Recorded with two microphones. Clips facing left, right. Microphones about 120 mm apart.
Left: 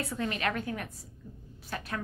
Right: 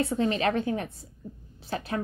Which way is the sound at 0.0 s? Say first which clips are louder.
Right 7 dB; 25° right (ahead or behind).